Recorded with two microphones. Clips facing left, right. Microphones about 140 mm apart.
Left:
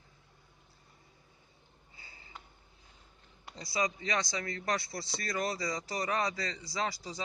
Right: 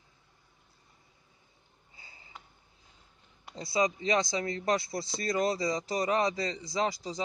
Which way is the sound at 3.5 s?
25° right (ahead or behind).